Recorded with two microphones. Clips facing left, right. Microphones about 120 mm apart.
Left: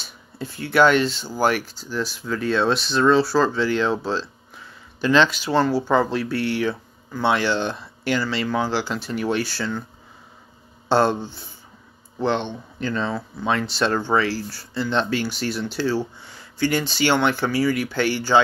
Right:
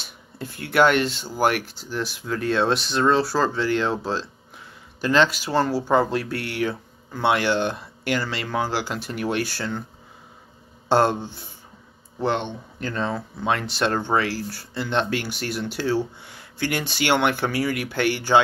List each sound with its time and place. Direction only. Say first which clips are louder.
0.0 s speech: left 2 dB; 55° right (ahead or behind)
5.0 s speech: left 2 dB; 45° right (ahead or behind)
10.9 s speech: even; 50° right (ahead or behind)
12.8 s speech: left 2 dB; 45° right (ahead or behind)